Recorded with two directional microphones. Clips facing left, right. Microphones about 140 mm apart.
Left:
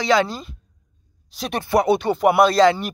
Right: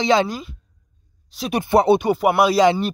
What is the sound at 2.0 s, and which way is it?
Speech, 5° right (ahead or behind).